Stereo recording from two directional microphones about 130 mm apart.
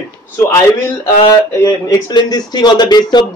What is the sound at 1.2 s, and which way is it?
Speech, 30° left (ahead or behind).